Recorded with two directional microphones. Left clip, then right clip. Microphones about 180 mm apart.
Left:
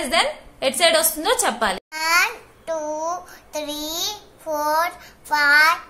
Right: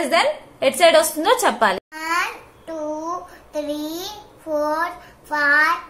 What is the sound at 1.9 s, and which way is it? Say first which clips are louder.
Babbling: left 4 dB; 45° left (ahead or behind).